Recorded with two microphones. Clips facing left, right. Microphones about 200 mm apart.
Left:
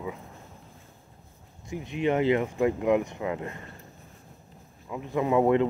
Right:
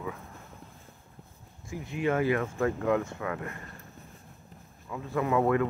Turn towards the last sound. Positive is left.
turn(degrees=20)  # may be behind; listen again after turning